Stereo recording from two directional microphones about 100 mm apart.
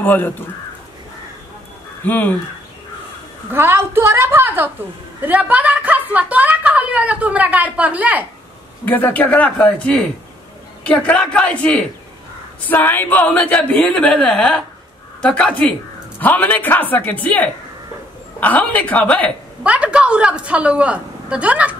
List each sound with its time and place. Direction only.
0.0 s speech: 20° left (ahead or behind)
2.0 s a woman's voice: 15° left (ahead or behind)
3.5 s a woman's voice: 25° right (ahead or behind)
8.8 s a woman's voice: 20° left (ahead or behind)
19.6 s a woman's voice: 10° right (ahead or behind)